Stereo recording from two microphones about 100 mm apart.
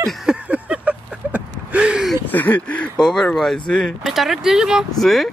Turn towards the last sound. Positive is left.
turn(degrees=0)  # may be behind; listen again after turning